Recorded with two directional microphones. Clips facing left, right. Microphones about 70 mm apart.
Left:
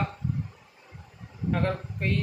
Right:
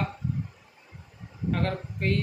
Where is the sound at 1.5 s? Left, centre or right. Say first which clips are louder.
Left 1 dB; centre.